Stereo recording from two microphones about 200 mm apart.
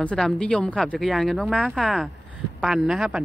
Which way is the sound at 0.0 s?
5° left (ahead or behind).